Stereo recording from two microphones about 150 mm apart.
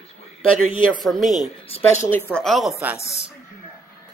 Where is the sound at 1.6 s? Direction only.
40° left (ahead or behind).